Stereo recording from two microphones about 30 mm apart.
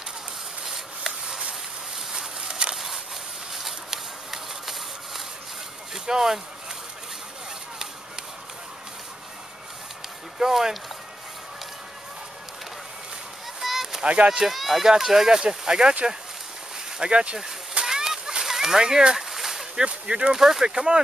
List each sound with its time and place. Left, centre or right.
0.7 s a sound: centre
5.9 s speech: centre
10.4 s speech: centre
13.6 s a sound: centre
14.0 s speech: right
14.5 s speech: centre
15.4 s speech: right
17.0 s speech: right
17.8 s a sound: centre
18.8 s speech: centre
19.1 s a sound: centre
19.8 s speech: right
20.3 s speech: centre
20.6 s speech: right